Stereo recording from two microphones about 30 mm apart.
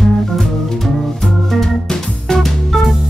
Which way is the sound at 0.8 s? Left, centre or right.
Centre.